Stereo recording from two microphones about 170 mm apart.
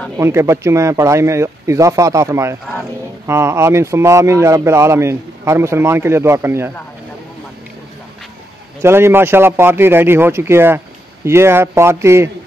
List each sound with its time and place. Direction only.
0.2 s speech: 15° right (ahead or behind)
2.6 s speech: centre (ahead or behind)
3.3 s speech: 15° right (ahead or behind)
8.8 s speech: 15° right (ahead or behind)